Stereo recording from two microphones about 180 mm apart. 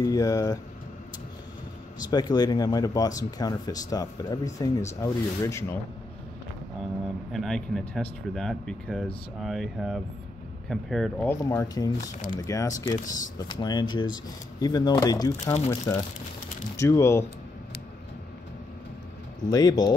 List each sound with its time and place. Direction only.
0.0 s speech: 20° left (ahead or behind)
2.0 s speech: 20° left (ahead or behind)
7.3 s speech: 5° left (ahead or behind)
11.4 s speech: 20° left (ahead or behind)
19.4 s speech: 20° left (ahead or behind)